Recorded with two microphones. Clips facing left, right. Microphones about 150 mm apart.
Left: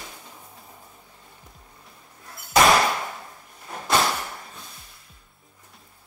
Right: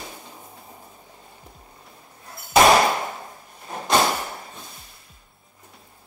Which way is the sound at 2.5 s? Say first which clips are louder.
Right 3 dB; 25° right (ahead or behind).